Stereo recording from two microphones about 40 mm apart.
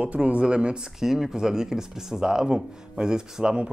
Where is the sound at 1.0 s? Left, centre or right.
Centre.